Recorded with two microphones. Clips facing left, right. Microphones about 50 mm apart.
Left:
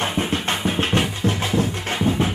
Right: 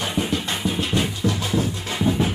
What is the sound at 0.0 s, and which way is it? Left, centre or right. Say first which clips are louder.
Music: left 2 dB; left.